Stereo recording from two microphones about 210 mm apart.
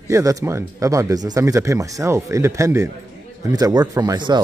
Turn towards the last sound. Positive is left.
turn(degrees=-20)  # may be behind; listen again after turning